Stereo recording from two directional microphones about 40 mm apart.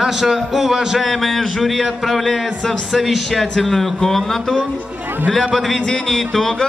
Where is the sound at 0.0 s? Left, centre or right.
Centre.